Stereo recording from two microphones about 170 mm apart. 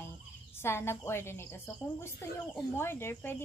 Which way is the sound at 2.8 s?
15° left (ahead or behind).